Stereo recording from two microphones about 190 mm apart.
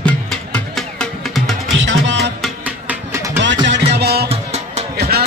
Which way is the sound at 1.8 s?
75° right (ahead or behind).